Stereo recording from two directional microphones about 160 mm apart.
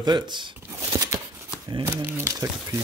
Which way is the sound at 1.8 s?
15° right (ahead or behind).